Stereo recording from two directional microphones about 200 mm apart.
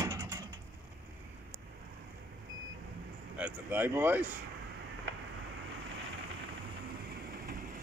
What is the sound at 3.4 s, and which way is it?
Speech, 10° right (ahead or behind).